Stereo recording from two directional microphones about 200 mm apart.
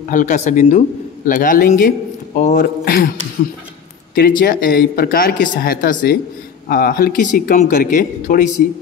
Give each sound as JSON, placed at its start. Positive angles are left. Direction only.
{"t": 0.1, "sound": "a man's voice", "side_deg": 40}
{"t": 4.1, "sound": "speech", "side_deg": 45}